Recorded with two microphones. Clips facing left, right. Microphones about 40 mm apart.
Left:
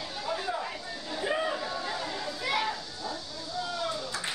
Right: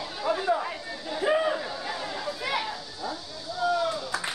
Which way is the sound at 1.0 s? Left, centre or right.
Centre.